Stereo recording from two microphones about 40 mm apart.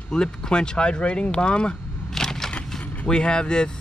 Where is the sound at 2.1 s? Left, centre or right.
Centre.